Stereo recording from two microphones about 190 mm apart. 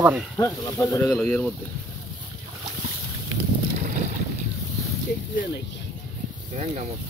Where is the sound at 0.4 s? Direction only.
15° left (ahead or behind).